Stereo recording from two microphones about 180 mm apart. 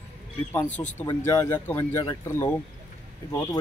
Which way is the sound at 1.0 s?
20° left (ahead or behind).